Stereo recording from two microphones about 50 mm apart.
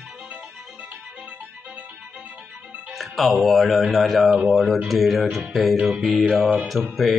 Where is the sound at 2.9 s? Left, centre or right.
Centre.